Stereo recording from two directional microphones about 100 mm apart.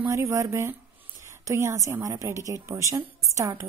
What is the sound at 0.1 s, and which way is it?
A woman's voice, 30° right (ahead or behind).